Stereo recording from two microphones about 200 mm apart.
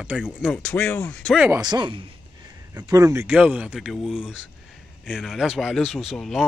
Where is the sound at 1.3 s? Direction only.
5° right (ahead or behind).